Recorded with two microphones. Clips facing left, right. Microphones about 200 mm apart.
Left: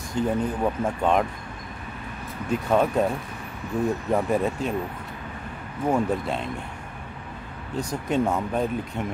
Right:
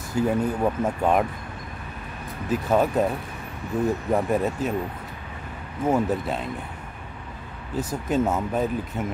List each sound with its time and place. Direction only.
0.1 s speech: 5° right (ahead or behind)
2.5 s speech: 5° right (ahead or behind)
4.1 s speech: centre (ahead or behind)
5.9 s speech: 5° right (ahead or behind)
7.7 s speech: 5° right (ahead or behind)